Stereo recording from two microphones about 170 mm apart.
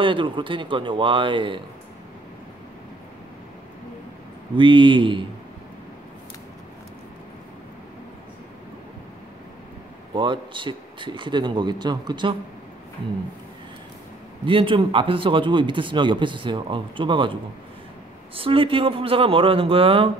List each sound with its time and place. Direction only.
0.0 s speech: 30° right (ahead or behind)
4.6 s speech: 30° right (ahead or behind)
10.1 s speech: 30° right (ahead or behind)
14.4 s speech: 30° right (ahead or behind)